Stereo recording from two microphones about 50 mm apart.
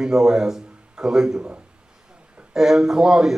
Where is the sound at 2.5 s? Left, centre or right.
Centre.